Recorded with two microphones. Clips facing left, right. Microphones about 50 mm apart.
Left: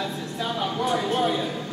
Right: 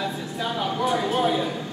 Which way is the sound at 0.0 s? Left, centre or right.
Centre.